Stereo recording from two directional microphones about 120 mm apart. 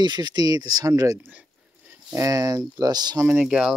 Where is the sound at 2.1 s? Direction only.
30° right (ahead or behind).